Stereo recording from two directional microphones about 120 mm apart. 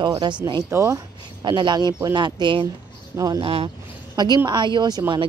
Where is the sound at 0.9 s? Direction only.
40° right (ahead or behind).